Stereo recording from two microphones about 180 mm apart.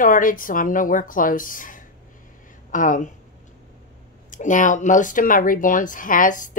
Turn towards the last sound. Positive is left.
turn(degrees=45)  # may be behind; listen again after turning